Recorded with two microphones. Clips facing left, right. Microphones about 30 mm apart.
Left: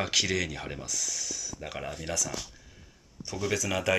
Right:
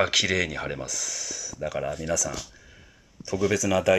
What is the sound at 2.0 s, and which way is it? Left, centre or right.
Speech, left.